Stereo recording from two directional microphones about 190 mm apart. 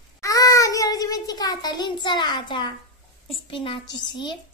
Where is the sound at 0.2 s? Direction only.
20° left (ahead or behind).